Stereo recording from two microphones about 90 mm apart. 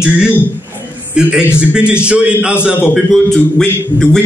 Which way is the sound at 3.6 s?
10° left (ahead or behind).